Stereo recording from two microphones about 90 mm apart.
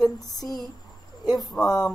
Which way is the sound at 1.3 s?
5° left (ahead or behind).